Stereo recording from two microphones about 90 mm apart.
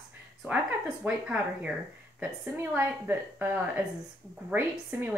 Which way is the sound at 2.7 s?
20° right (ahead or behind).